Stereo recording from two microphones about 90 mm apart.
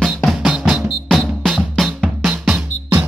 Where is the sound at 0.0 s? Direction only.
Centre (ahead or behind).